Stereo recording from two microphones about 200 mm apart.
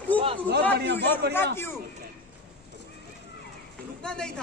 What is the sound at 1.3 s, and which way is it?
Speech, 10° left (ahead or behind).